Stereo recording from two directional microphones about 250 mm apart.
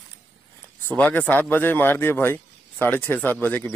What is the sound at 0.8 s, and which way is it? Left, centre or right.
Speech, centre.